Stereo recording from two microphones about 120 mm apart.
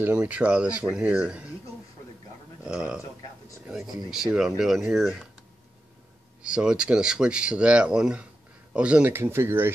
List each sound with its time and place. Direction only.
0.0 s speech: 10° right (ahead or behind)
2.6 s speech: 5° right (ahead or behind)
6.4 s speech: 5° right (ahead or behind)